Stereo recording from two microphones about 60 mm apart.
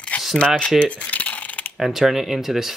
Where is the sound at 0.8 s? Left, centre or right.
Left.